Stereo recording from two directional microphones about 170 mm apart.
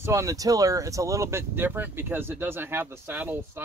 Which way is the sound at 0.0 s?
15° right (ahead or behind).